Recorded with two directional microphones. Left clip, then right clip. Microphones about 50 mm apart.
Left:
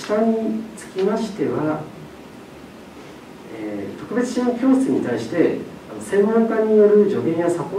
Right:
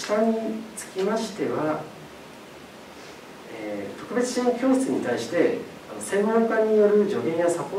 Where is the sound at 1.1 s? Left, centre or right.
Right.